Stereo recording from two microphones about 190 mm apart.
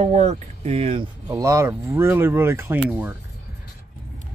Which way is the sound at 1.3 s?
15° right (ahead or behind).